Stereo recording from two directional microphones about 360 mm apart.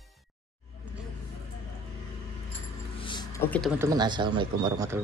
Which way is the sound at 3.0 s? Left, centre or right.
Centre.